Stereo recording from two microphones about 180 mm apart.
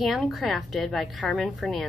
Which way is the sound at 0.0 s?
Centre (ahead or behind).